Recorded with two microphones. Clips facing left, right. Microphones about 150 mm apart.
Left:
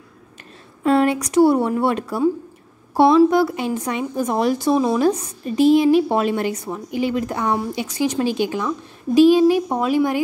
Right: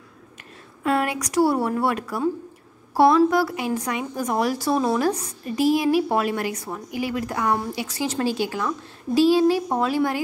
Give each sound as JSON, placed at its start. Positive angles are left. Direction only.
{"t": 0.8, "sound": "a woman's voice", "side_deg": 30}